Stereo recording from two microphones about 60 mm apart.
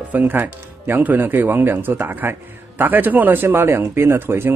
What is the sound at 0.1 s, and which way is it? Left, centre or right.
Speech, right.